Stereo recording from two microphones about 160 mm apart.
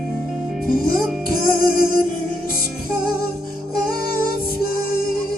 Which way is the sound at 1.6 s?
65° left (ahead or behind).